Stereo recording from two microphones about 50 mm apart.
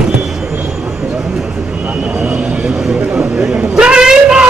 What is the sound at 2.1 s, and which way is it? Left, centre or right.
Vehicle, right.